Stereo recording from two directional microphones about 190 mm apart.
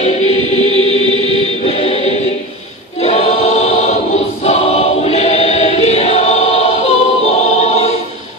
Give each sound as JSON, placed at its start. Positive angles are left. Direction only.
{"t": 0.0, "sound": "choir", "side_deg": 35}
{"t": 1.6, "sound": "music", "side_deg": 30}
{"t": 3.0, "sound": "choir", "side_deg": 35}